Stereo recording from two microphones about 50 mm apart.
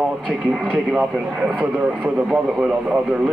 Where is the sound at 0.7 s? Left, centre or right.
Centre.